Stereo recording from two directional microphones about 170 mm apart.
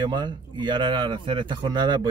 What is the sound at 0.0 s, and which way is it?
Speech, 25° right (ahead or behind).